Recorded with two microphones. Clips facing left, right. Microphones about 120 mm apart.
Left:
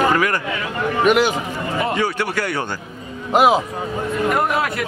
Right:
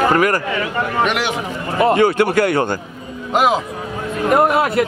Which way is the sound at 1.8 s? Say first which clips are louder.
Right 9 dB; 55° right (ahead or behind).